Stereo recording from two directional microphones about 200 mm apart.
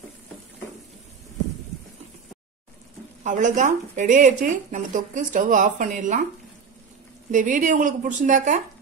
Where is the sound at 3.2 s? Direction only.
40° right (ahead or behind).